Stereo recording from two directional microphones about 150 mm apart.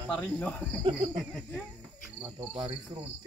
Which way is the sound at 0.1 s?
5° left (ahead or behind).